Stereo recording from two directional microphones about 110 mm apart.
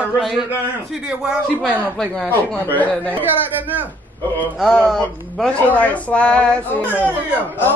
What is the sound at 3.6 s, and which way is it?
Speech, 15° right (ahead or behind).